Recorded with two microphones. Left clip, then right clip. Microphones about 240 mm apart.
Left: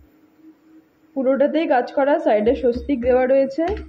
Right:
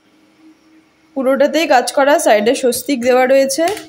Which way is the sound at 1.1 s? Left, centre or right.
Centre.